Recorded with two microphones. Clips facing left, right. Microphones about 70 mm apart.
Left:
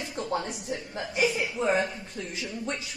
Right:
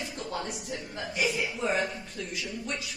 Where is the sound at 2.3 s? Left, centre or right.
Left.